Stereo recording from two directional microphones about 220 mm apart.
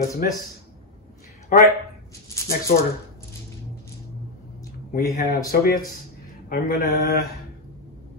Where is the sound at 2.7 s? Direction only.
40° left (ahead or behind).